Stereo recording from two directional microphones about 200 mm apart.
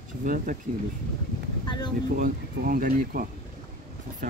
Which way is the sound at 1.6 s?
20° left (ahead or behind).